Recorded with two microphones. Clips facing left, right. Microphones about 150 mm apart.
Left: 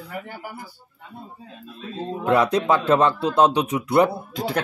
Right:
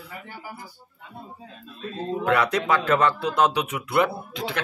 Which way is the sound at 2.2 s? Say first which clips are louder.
Left 4 dB; 30° left (ahead or behind).